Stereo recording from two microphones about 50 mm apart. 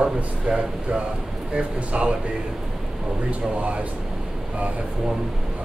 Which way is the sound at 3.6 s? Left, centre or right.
Right.